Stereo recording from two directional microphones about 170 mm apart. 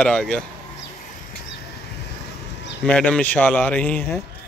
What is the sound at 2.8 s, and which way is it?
Speech, 5° left (ahead or behind).